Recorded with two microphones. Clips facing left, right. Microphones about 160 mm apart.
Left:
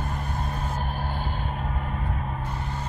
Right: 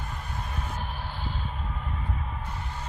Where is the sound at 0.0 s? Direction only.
45° left (ahead or behind).